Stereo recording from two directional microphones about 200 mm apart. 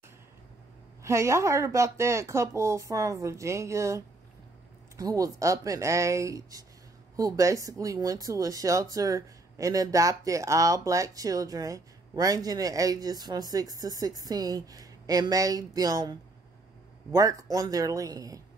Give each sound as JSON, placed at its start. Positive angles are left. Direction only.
{"t": 1.0, "sound": "speech", "side_deg": -15}